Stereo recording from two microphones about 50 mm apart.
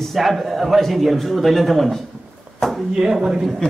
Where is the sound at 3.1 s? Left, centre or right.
Centre.